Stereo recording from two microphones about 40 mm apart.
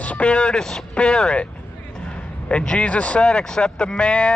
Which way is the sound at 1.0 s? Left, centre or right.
Left.